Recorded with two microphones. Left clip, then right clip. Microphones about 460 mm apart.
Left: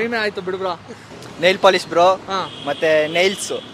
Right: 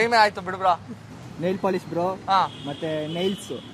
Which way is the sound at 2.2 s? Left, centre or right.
Right.